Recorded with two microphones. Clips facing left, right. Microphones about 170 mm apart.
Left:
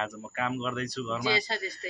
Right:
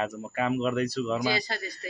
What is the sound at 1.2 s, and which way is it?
Speech, 25° left (ahead or behind).